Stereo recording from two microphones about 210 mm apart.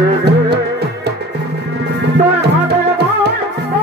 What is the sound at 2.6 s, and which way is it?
Music, 50° right (ahead or behind).